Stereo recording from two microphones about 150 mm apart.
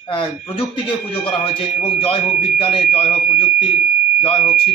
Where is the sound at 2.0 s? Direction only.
40° left (ahead or behind).